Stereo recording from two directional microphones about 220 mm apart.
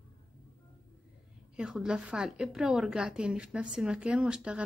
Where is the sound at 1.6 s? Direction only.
5° right (ahead or behind).